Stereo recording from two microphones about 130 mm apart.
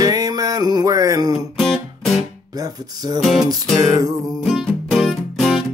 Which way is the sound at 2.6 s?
30° right (ahead or behind).